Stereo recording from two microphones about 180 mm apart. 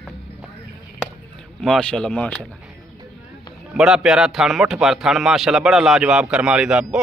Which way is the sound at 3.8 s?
5° right (ahead or behind).